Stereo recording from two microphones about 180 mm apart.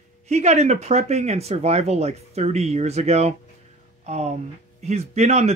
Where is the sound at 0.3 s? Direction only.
40° right (ahead or behind).